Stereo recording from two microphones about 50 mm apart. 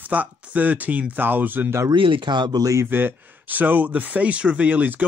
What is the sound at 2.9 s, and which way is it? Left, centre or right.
Speech, right.